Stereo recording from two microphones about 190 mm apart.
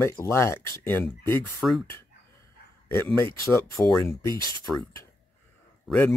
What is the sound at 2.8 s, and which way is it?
Speech, 10° left (ahead or behind).